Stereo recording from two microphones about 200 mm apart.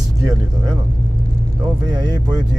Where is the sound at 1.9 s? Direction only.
20° right (ahead or behind).